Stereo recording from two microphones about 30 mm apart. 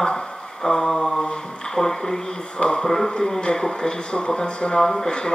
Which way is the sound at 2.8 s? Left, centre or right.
Centre.